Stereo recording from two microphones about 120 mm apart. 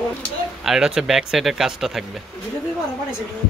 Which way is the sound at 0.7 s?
5° right (ahead or behind).